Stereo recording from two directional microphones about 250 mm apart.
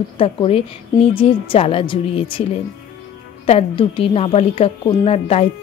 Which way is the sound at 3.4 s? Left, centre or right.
Left.